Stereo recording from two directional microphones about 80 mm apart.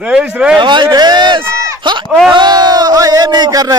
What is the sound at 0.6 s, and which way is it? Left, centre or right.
Speech, right.